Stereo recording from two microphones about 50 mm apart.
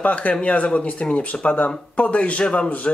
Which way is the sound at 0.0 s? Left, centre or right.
Left.